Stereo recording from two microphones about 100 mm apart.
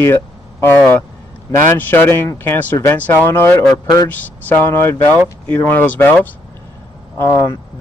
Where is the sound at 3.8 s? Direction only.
40° left (ahead or behind).